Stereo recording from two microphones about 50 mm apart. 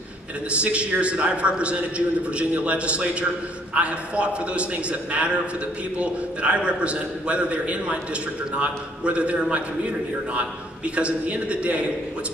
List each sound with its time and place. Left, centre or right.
0.5 s a man's voice: right
11.0 s a man's voice: right